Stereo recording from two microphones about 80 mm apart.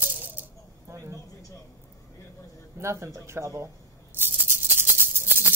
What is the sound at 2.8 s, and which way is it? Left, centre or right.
Speech, right.